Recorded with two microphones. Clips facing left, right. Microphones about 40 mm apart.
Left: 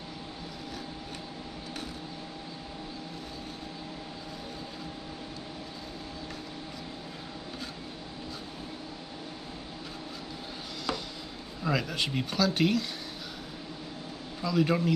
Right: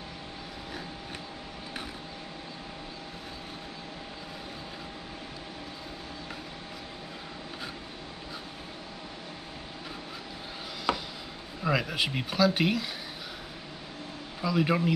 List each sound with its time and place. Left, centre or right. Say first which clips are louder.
10.9 s chopping: right 4 dB; right
11.6 s speech: right 2 dB; centre
14.4 s speech: even; centre